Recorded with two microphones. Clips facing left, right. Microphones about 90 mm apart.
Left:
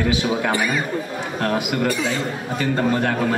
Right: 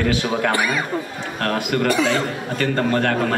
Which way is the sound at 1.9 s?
70° right (ahead or behind).